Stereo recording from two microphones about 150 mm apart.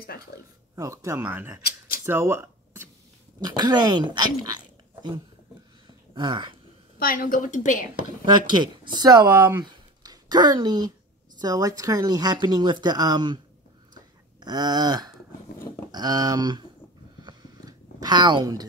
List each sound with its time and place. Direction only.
0.3 s speech: 80° left
0.7 s speech: 20° right (ahead or behind)
2.0 s a sound: 15° right (ahead or behind)
3.3 s speech: 30° right (ahead or behind)
7.0 s a woman's voice: 70° left (ahead or behind)
8.5 s speech: 30° right (ahead or behind)
9.3 s speech: 10° right (ahead or behind)
9.6 s a sound: 30° right (ahead or behind)
11.3 s speech: 25° right (ahead or behind)
14.4 s a sound: 25° right (ahead or behind)
15.9 s speech: 25° right (ahead or behind)
17.2 s a sound: 30° right (ahead or behind)